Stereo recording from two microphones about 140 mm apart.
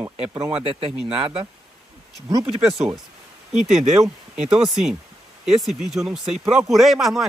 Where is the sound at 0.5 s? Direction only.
45° right (ahead or behind).